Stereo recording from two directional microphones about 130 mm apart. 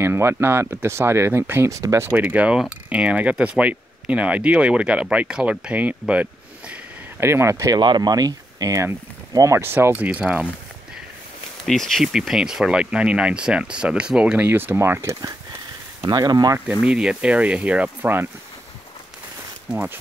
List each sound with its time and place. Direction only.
0.0 s speech: 20° right (ahead or behind)
6.7 s a sound: 20° right (ahead or behind)
7.8 s speech: 35° right (ahead or behind); by 10.5 s 10° right (ahead or behind)
11.6 s speech: centre (ahead or behind); by 15.3 s 20° right (ahead or behind)
16.1 s speech: 30° right (ahead or behind)
16.8 s speech: 5° right (ahead or behind)
19.7 s speech: 10° right (ahead or behind)